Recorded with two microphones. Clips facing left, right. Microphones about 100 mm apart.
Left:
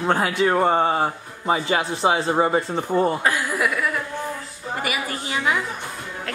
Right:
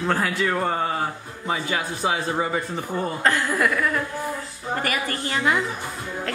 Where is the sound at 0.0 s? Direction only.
20° left (ahead or behind).